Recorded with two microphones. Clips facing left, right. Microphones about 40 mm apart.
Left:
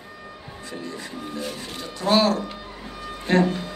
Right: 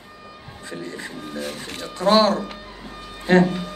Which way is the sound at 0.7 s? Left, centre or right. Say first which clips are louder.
Right 2 dB; right.